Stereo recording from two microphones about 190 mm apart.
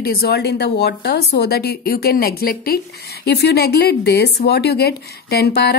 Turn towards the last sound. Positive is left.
turn(degrees=60)  # may be behind; listen again after turning